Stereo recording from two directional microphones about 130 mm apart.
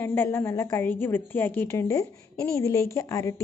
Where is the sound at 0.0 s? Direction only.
15° left (ahead or behind).